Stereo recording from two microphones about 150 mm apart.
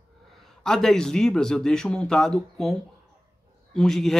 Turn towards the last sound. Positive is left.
turn(degrees=0)  # may be behind; listen again after turning